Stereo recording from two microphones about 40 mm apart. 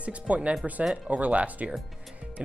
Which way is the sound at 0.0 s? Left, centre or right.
Right.